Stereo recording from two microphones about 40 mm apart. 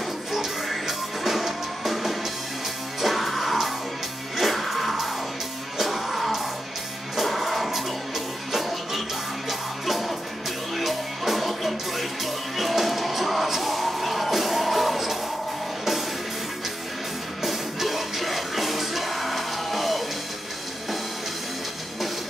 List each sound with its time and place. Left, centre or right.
0.3 s music: centre
17.4 s music: centre